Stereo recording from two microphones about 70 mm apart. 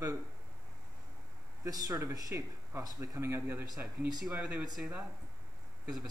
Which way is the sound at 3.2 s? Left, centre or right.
Right.